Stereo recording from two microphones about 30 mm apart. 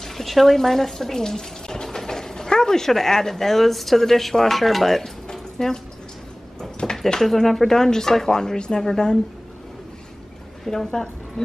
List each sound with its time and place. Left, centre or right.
0.0 s speech: centre
6.8 s speech: centre
8.5 s speech: left
10.6 s speech: centre
10.9 s a woman's voice: left